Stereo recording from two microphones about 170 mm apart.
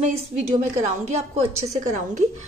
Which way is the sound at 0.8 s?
45° right (ahead or behind).